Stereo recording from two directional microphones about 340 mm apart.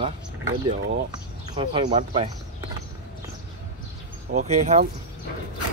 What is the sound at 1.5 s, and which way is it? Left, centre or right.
Speech, centre.